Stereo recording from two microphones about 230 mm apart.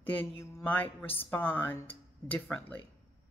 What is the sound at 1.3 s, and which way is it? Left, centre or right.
Speech, centre.